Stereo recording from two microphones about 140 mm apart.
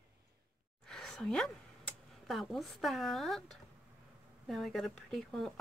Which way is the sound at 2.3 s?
Centre (ahead or behind).